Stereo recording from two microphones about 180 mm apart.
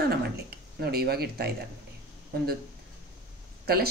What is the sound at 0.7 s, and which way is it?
Speech, 60° right (ahead or behind).